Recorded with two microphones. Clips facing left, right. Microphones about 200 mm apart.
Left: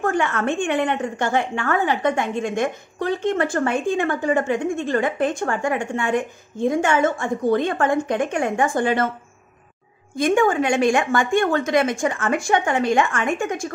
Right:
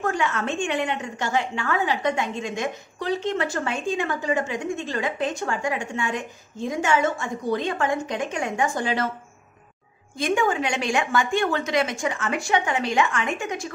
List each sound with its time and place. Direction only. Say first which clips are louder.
0.0 s a woman's voice: left 4 dB; 55° left (ahead or behind)
10.1 s a woman's voice: left 5 dB; 50° left (ahead or behind)